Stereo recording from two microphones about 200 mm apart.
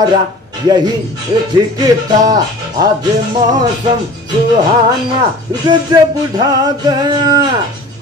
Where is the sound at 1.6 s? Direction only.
20° right (ahead or behind).